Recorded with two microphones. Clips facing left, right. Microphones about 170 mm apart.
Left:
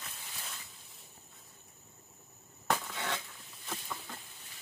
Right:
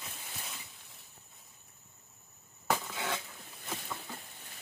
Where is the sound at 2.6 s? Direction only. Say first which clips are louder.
Right 1 dB; 5° right (ahead or behind).